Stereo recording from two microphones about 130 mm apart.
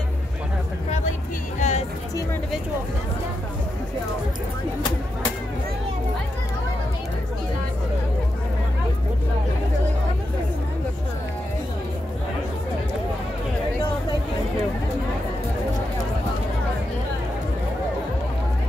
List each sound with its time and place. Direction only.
1.6 s music: 65° left (ahead or behind)